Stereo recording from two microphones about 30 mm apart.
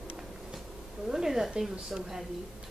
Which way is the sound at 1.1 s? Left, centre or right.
Centre.